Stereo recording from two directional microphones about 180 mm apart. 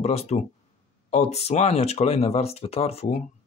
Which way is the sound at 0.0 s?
35° left (ahead or behind).